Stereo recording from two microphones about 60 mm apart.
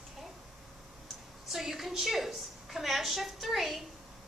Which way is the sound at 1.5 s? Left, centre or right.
Centre.